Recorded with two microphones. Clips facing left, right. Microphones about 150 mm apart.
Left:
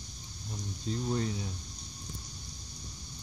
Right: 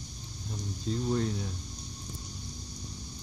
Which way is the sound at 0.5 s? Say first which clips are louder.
Right 2 dB; centre (ahead or behind).